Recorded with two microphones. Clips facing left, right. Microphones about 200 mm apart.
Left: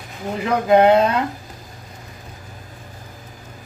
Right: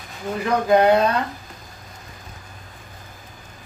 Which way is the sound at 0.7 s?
25° left (ahead or behind).